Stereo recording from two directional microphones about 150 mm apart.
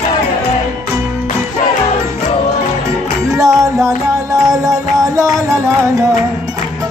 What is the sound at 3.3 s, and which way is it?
Music, 20° right (ahead or behind).